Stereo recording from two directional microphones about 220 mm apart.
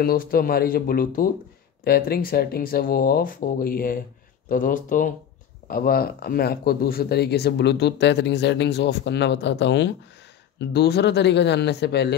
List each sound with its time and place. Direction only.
0.0 s speech: 40° left (ahead or behind)